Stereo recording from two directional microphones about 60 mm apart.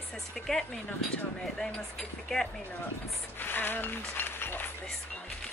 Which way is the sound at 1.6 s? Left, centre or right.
Centre.